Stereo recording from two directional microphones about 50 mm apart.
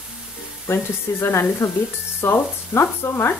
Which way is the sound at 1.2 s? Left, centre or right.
Left.